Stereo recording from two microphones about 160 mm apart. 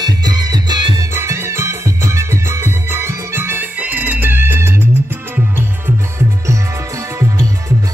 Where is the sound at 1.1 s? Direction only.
15° right (ahead or behind).